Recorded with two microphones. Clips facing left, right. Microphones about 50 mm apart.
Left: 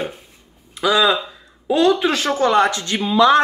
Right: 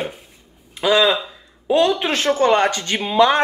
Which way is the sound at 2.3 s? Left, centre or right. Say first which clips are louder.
Even; right.